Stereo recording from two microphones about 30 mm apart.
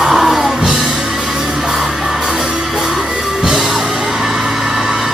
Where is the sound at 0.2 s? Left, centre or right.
Centre.